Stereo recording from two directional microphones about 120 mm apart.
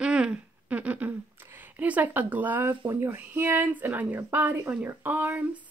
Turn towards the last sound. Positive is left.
turn(degrees=-15)  # may be behind; listen again after turning